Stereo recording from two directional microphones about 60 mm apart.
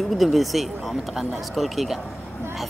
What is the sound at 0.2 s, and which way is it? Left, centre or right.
Speech, centre.